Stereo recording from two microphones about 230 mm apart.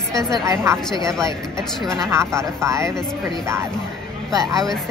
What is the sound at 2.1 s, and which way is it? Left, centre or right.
Speech, centre.